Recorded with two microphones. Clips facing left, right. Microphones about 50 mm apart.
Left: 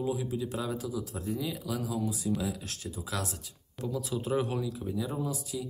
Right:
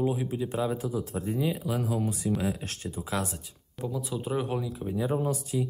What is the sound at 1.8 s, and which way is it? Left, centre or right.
Speech, right.